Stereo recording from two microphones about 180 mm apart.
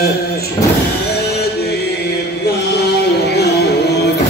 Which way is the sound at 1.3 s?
65° left (ahead or behind).